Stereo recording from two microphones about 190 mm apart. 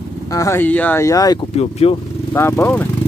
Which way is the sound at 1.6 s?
35° left (ahead or behind).